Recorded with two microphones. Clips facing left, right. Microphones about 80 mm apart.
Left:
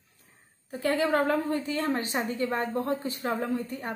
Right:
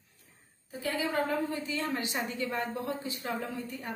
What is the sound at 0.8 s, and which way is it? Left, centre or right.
A woman's voice, left.